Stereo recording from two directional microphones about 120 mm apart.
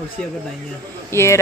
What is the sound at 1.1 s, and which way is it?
Speech, 20° left (ahead or behind).